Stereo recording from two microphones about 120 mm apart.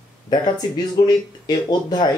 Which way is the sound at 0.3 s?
35° left (ahead or behind).